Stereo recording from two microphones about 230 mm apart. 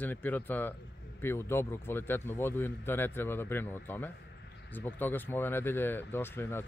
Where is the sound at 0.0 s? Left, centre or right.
Centre.